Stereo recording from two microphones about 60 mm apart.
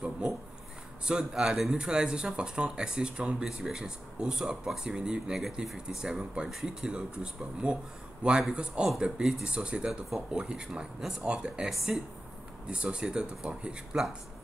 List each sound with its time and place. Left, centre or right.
1.0 s speech: centre